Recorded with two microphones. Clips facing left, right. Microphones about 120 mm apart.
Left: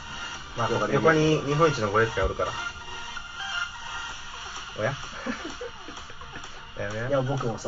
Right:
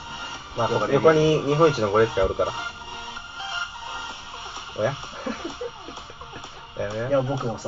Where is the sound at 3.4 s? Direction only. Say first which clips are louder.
Right 2 dB; 25° right (ahead or behind).